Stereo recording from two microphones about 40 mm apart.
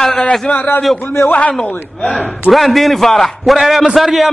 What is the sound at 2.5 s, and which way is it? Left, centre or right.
A man's voice, centre.